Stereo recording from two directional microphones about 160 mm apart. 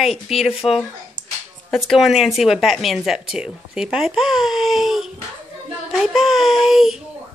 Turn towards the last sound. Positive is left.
turn(degrees=0)  # may be behind; listen again after turning